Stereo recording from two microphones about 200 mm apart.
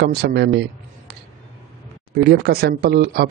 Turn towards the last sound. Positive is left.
turn(degrees=-50)  # may be behind; listen again after turning